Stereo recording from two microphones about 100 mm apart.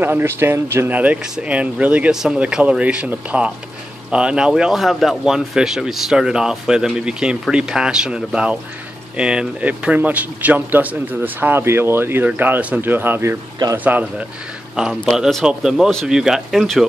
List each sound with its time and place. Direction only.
0.0 s speech: 25° right (ahead or behind)
15.0 s speech: 5° right (ahead or behind)